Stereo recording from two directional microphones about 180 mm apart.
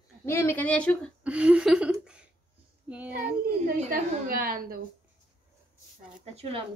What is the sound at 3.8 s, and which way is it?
A woman's voice, 50° right (ahead or behind).